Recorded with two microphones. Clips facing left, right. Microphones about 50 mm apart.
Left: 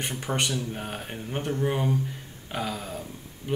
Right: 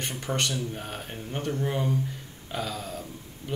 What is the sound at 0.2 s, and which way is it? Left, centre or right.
Speech, centre.